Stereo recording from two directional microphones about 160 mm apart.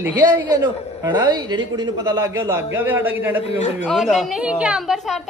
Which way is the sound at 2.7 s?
15° right (ahead or behind).